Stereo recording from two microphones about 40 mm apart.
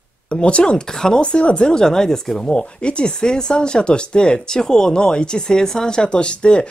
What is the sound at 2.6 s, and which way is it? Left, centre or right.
Speech, left.